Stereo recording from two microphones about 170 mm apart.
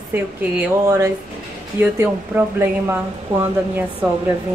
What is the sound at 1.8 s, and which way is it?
Speech, 10° right (ahead or behind).